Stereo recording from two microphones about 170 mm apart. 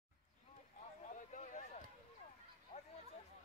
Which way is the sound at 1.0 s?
45° left (ahead or behind).